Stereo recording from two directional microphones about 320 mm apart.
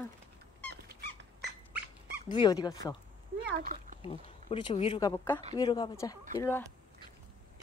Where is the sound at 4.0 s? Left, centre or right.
Centre.